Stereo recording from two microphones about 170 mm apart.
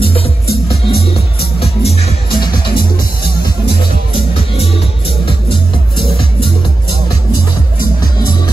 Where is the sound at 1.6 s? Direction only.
35° left (ahead or behind).